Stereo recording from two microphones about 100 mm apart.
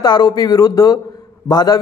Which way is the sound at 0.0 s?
40° left (ahead or behind).